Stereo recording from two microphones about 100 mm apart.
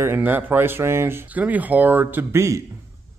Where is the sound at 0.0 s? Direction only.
20° right (ahead or behind).